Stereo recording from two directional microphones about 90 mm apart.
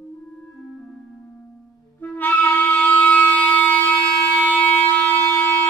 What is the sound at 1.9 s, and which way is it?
Music, 20° left (ahead or behind).